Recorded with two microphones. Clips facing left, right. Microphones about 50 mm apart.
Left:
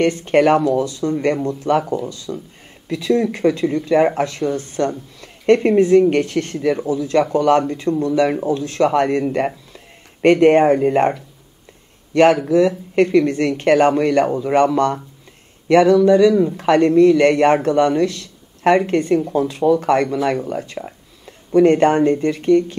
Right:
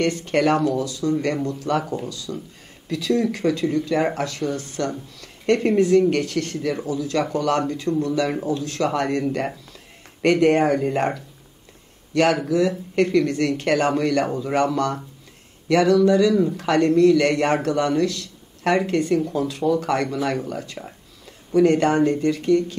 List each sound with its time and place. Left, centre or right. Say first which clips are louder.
0.0 s speech: left 5 dB; left
15.7 s speech: left 5 dB; left
20.4 s speech: left 5 dB; left
20.8 s a sound: left 5 dB; centre
21.5 s speech: left 4 dB; left